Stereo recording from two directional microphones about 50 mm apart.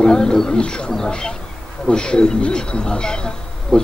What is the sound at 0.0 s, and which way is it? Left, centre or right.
A man's voice, centre.